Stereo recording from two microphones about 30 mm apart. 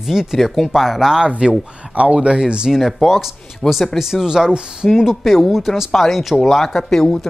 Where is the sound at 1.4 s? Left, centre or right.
Right.